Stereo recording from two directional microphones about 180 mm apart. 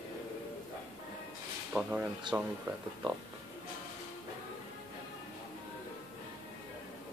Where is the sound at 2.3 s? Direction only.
25° right (ahead or behind).